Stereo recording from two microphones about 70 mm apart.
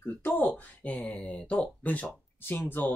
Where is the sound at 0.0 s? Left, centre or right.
Left.